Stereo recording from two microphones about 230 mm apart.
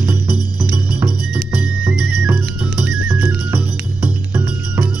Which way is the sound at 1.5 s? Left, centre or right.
Centre.